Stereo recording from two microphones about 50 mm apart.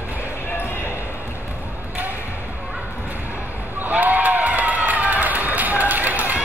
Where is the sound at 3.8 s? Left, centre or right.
Right.